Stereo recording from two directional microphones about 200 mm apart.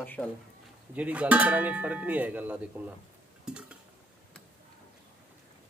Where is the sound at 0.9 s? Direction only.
5° right (ahead or behind).